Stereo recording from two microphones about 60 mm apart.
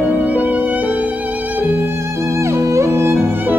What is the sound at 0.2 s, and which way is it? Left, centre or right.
Music, right.